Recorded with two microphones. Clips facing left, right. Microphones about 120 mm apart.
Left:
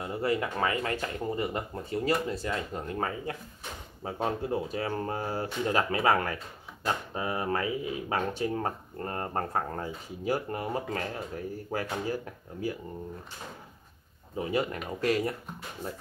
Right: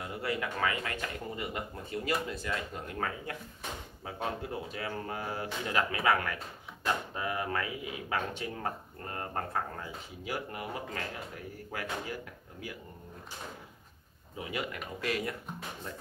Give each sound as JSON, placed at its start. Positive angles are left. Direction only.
{"t": 0.0, "sound": "speech", "side_deg": 30}
{"t": 14.3, "sound": "speech", "side_deg": 35}